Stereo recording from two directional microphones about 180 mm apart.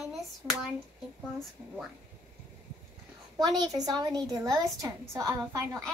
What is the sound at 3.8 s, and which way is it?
A woman's voice, 20° right (ahead or behind).